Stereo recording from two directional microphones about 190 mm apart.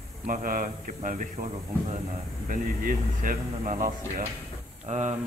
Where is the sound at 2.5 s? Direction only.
45° right (ahead or behind).